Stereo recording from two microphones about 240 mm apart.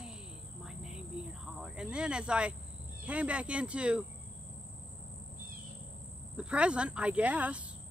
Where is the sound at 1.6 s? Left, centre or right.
Centre.